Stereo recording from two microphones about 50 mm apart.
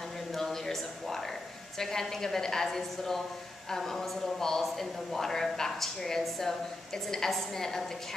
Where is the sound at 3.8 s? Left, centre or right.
Centre.